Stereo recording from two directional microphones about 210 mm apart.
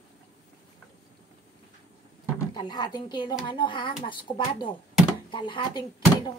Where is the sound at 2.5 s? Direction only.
20° left (ahead or behind).